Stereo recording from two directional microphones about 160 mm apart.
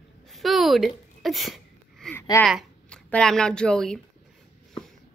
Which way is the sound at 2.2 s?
15° left (ahead or behind).